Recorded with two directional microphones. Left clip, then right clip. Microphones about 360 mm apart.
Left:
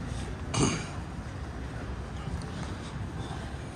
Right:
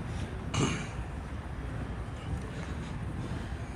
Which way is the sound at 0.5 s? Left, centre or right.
Centre.